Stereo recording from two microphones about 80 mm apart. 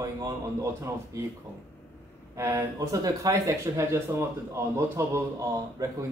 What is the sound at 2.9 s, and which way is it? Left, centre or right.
Speech, right.